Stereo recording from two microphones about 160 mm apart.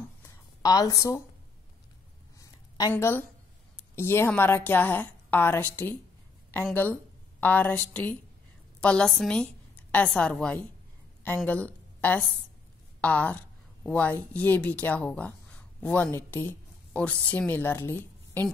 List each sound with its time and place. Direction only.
0.6 s a woman's voice: 25° left (ahead or behind)
2.3 s a sound: 20° left (ahead or behind)
2.9 s a woman's voice: 15° left (ahead or behind)